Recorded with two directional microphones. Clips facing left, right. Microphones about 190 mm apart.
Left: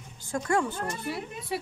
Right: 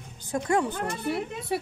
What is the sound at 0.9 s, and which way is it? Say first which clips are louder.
Speech: right 4 dB; 55° right (ahead or behind).